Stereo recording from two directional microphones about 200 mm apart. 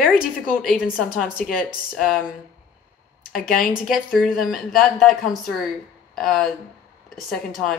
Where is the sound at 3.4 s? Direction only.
45° left (ahead or behind).